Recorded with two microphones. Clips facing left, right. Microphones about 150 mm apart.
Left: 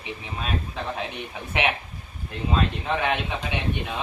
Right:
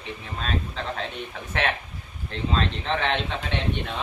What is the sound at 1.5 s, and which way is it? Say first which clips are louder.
A man's voice: left 1 dB; 15° left (ahead or behind).